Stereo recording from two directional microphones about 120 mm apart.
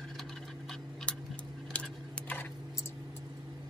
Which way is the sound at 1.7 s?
15° left (ahead or behind).